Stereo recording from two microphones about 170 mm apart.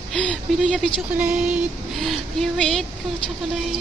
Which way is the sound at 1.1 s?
5° right (ahead or behind).